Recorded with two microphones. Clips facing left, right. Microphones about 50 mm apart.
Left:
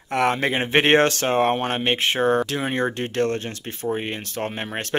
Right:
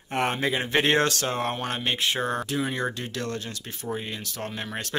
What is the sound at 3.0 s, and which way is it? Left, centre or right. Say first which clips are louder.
Speech: left 8 dB; left.